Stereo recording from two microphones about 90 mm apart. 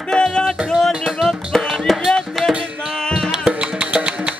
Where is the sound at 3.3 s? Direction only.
10° right (ahead or behind).